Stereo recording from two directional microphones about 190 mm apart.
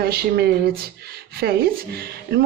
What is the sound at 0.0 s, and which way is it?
Speech, 55° right (ahead or behind).